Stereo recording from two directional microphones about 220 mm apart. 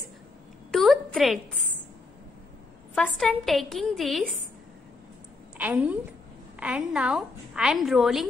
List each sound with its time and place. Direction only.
0.7 s a sound: centre (ahead or behind)
2.9 s a woman's voice: 5° left (ahead or behind)
5.6 s a woman's voice: 5° right (ahead or behind)